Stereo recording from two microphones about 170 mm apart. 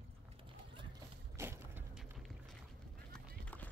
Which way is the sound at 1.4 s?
15° right (ahead or behind).